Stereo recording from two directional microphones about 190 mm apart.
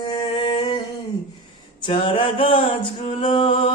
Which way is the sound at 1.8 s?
30° left (ahead or behind).